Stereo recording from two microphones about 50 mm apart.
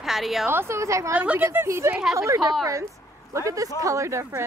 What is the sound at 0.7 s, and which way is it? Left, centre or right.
Speech, right.